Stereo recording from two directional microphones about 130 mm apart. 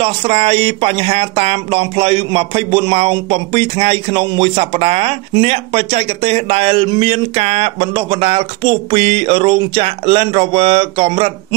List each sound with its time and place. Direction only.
0.0 s speech: 50° right (ahead or behind)